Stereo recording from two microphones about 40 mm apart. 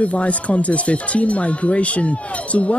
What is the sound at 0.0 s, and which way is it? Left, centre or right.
Speech, left.